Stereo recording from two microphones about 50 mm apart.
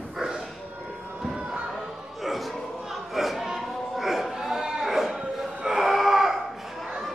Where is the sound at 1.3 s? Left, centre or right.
Centre.